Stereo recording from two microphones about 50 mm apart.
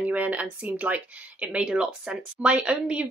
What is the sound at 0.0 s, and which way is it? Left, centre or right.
Speech, right.